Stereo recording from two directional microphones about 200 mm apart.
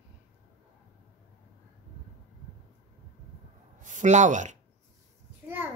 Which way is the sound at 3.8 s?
40° right (ahead or behind).